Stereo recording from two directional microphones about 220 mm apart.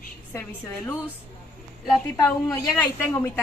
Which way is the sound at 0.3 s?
10° left (ahead or behind).